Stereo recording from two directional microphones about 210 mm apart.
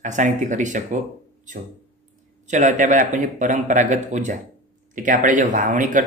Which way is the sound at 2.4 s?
35° right (ahead or behind).